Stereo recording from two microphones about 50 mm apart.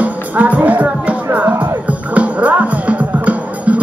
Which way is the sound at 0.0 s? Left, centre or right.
Right.